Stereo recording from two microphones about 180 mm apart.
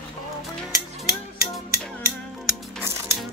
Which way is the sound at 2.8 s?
15° right (ahead or behind).